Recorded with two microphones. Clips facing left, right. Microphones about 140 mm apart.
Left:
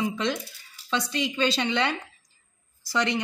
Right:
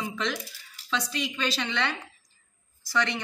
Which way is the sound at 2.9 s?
15° left (ahead or behind).